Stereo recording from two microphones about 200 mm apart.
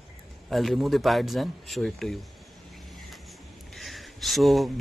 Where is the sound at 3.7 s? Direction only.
Centre (ahead or behind).